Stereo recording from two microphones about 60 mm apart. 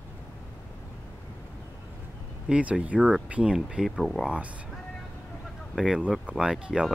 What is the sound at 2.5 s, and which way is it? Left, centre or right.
Speech, centre.